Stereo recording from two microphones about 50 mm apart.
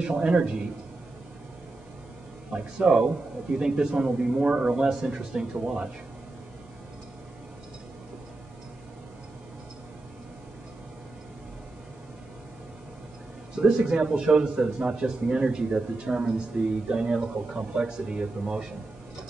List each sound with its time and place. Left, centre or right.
0.0 s speech: centre
2.5 s speech: centre
13.6 s speech: centre